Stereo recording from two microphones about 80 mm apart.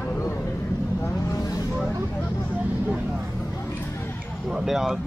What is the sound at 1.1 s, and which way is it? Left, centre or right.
Vehicle, left.